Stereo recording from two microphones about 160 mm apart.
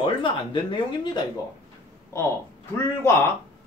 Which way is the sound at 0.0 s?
30° left (ahead or behind).